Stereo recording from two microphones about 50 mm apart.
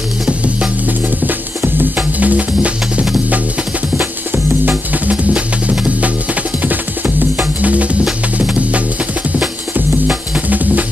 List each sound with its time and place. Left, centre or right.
1.2 s music: right
2.1 s music: right
5.1 s music: right